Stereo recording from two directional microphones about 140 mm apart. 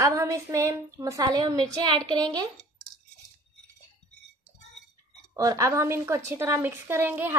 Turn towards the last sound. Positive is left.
turn(degrees=-15)  # may be behind; listen again after turning